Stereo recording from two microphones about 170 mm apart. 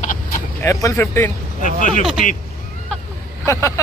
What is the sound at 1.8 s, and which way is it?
Speech, 45° left (ahead or behind).